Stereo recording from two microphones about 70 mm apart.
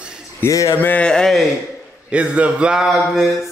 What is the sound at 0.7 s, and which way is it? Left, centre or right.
Speech, left.